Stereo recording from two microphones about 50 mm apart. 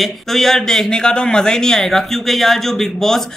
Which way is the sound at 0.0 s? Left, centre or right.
Centre.